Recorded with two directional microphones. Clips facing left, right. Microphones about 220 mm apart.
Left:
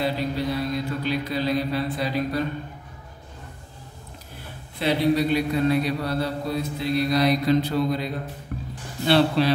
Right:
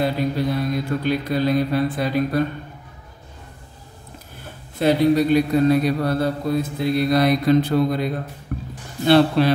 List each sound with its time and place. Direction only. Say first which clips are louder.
0.0 s mantra: right 4 dB; 50° right (ahead or behind)
4.7 s a man's voice: right 5 dB; 45° right (ahead or behind)
8.5 s music: right 5 dB; 50° right (ahead or behind)
9.0 s a man's voice: right 4 dB; 50° right (ahead or behind)